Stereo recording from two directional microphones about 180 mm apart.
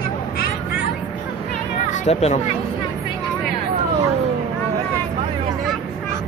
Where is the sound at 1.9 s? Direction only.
35° left (ahead or behind).